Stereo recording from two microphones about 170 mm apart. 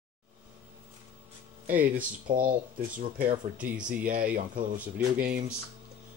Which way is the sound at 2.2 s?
55° right (ahead or behind).